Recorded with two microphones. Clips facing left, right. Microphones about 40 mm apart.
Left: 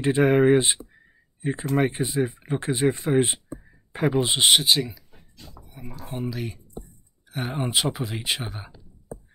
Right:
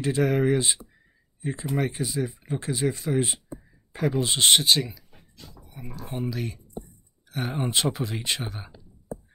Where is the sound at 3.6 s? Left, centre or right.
Left.